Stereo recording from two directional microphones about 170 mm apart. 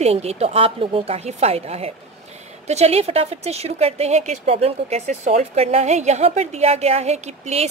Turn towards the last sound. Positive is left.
turn(degrees=-40)  # may be behind; listen again after turning